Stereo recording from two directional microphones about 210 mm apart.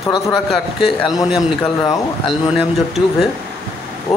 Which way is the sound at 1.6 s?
20° left (ahead or behind).